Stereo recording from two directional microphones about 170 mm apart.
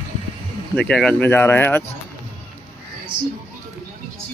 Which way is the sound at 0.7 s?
5° left (ahead or behind).